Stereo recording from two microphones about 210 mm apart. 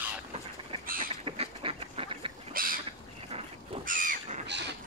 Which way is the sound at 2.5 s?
45° right (ahead or behind).